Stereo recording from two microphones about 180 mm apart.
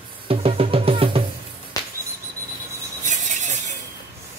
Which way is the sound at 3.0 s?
45° right (ahead or behind).